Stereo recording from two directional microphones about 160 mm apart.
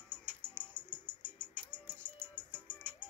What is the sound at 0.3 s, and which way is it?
Music, 5° left (ahead or behind).